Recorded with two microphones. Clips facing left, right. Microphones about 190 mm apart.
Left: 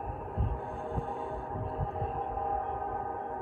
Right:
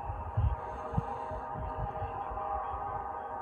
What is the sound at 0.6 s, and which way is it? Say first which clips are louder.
Heart sounds: left 2 dB; centre (ahead or behind).